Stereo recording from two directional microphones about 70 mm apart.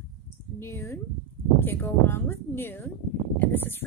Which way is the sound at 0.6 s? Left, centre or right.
Left.